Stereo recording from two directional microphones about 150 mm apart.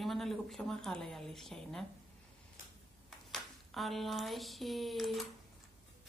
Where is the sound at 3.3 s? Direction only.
Centre (ahead or behind).